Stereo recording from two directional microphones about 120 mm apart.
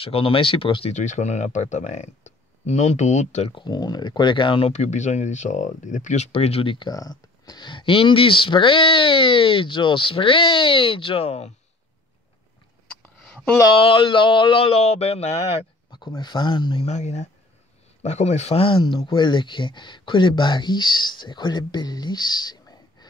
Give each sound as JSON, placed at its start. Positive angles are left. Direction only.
{"t": 0.0, "sound": "speech", "side_deg": 50}
{"t": 0.9, "sound": "speech", "side_deg": 90}
{"t": 3.5, "sound": "speech", "side_deg": 35}
{"t": 4.7, "sound": "speech", "side_deg": 80}
{"t": 6.9, "sound": "speech", "side_deg": 30}
{"t": 13.2, "sound": "a sound", "side_deg": 5}
{"t": 13.7, "sound": "speech", "side_deg": 45}
{"t": 15.9, "sound": "speech", "side_deg": 40}
{"t": 16.8, "sound": "speech", "side_deg": 70}